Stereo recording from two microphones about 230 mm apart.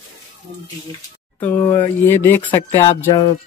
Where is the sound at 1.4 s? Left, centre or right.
Centre.